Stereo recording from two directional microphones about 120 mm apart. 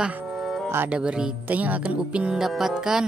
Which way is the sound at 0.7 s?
20° right (ahead or behind).